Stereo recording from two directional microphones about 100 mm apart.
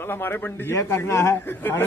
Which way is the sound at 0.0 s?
20° left (ahead or behind).